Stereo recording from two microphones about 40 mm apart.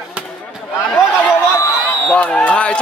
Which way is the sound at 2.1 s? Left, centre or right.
Left.